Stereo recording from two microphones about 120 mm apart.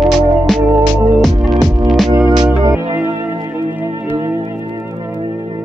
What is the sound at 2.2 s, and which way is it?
Music, 30° right (ahead or behind).